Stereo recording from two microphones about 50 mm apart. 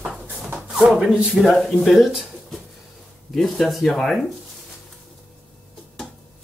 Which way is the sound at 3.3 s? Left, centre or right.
Centre.